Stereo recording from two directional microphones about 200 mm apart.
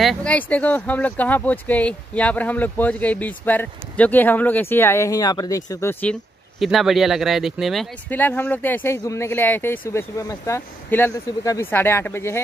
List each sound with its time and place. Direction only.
0.0 s speech: 5° left (ahead or behind)